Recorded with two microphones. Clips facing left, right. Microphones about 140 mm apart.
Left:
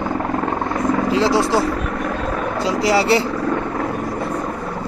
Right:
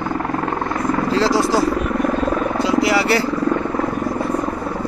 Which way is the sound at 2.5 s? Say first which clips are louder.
Left 2 dB; 35° left (ahead or behind).